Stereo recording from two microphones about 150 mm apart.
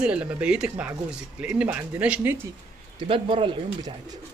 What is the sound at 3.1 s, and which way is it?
Speech, 35° right (ahead or behind).